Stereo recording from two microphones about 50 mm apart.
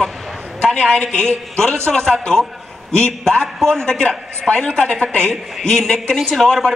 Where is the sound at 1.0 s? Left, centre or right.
Centre.